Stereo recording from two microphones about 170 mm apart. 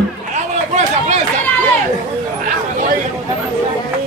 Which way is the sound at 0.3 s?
45° right (ahead or behind).